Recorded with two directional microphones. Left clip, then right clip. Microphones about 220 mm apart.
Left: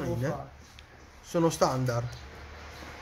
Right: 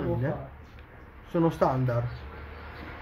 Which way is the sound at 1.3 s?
25° left (ahead or behind).